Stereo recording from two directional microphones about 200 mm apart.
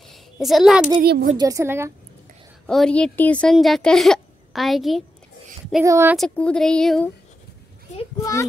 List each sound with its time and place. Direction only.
0.1 s a sound: centre (ahead or behind)
1.0 s speech: 50° right (ahead or behind)
1.3 s a woman's voice: 20° right (ahead or behind)
2.6 s a woman's voice: 5° left (ahead or behind)
5.9 s a woman's voice: 15° right (ahead or behind)
6.1 s a woman's voice: 5° left (ahead or behind)
8.2 s a child's voice: 15° left (ahead or behind)